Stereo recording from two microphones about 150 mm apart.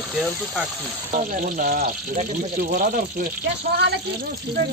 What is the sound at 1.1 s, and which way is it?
Speech, 65° right (ahead or behind).